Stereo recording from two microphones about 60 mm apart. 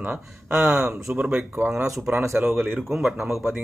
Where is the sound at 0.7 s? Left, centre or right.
Centre.